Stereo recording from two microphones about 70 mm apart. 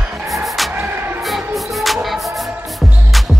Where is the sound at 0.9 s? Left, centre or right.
Right.